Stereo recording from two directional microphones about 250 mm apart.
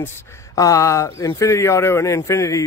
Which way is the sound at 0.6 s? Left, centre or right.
Centre.